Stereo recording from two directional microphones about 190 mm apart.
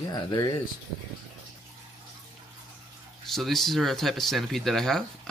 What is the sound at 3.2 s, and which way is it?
Speech, centre (ahead or behind).